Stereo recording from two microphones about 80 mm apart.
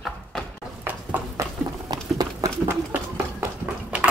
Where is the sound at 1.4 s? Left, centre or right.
Right.